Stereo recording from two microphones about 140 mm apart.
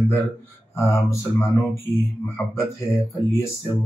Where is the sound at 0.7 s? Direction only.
20° left (ahead or behind).